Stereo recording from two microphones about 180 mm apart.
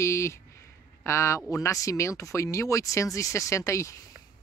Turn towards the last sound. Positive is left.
turn(degrees=15)  # may be behind; listen again after turning